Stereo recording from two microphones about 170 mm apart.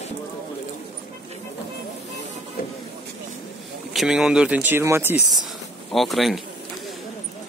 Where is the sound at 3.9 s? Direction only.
5° right (ahead or behind).